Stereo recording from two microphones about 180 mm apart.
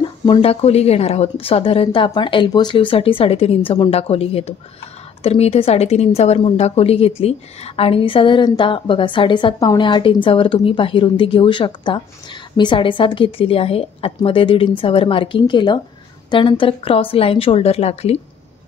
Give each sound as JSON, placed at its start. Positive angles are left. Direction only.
{"t": 0.2, "sound": "a woman's voice", "side_deg": 30}